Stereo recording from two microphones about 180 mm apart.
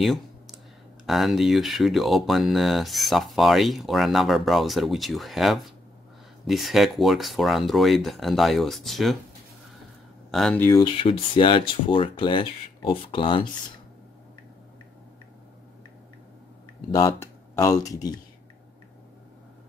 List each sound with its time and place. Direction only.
1.0 s speech: centre (ahead or behind)
10.3 s speech: 5° left (ahead or behind)
10.7 s speech: 25° left (ahead or behind)
16.9 s speech: 20° left (ahead or behind)